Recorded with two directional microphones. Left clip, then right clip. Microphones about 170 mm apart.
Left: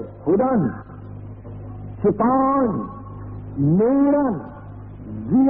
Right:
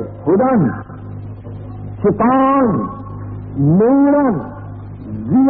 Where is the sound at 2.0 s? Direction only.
30° left (ahead or behind).